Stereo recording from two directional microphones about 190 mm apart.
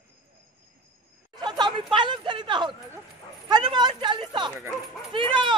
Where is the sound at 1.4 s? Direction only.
25° right (ahead or behind).